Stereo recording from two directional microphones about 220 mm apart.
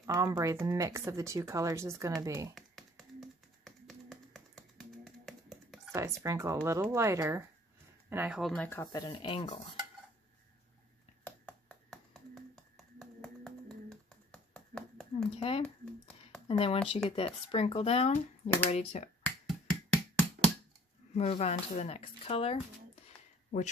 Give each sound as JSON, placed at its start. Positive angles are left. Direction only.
{"t": 0.0, "sound": "speech", "side_deg": -15}
{"t": 2.5, "sound": "tap", "side_deg": 0}
{"t": 5.9, "sound": "speech", "side_deg": -15}
{"t": 11.2, "sound": "finger snapping", "side_deg": 5}
{"t": 15.3, "sound": "speech", "side_deg": 25}
{"t": 15.6, "sound": "a sound", "side_deg": 5}
{"t": 16.4, "sound": "speech", "side_deg": 25}
{"t": 19.2, "sound": "finger snapping", "side_deg": 5}
{"t": 21.1, "sound": "speech", "side_deg": 30}
{"t": 23.0, "sound": "a sound", "side_deg": 30}